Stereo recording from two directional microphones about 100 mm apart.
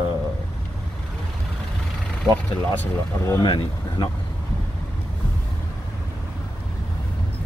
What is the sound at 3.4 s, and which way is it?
Speech, 50° left (ahead or behind).